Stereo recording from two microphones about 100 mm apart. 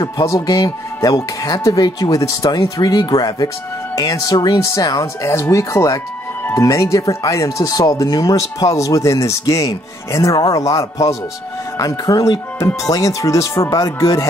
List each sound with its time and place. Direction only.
0.2 s speech: 35° left (ahead or behind)
4.6 s speech: 30° left (ahead or behind)